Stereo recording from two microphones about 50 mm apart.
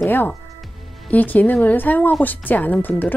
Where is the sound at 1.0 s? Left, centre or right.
Left.